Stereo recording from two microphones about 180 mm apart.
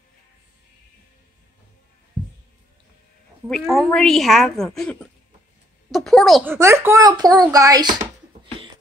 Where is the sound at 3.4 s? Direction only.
Centre (ahead or behind).